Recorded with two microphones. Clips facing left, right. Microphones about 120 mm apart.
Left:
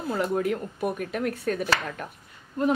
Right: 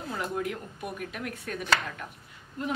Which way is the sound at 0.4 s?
45° left (ahead or behind).